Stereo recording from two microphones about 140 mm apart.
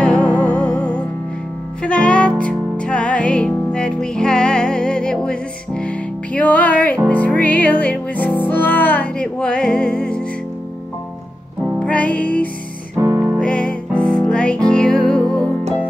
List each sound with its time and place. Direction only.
0.0 s music: 10° left (ahead or behind)
11.8 s music: 10° left (ahead or behind)
12.9 s music: 20° right (ahead or behind)
13.4 s music: 10° left (ahead or behind)